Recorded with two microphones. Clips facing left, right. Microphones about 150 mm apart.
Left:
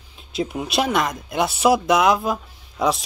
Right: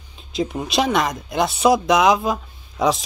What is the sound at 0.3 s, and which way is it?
Speech, 5° left (ahead or behind).